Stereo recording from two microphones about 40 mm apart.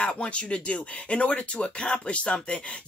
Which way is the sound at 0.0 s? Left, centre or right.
Left.